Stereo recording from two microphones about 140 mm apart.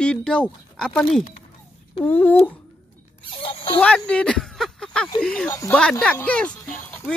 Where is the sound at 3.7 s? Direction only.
10° left (ahead or behind).